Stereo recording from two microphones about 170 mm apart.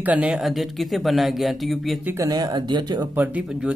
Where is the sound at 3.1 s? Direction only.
5° right (ahead or behind).